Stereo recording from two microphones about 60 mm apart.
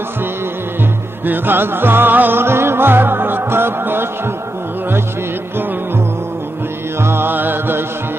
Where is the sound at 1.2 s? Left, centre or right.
Right.